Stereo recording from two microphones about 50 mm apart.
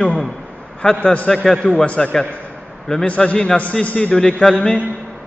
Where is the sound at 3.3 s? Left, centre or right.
Centre.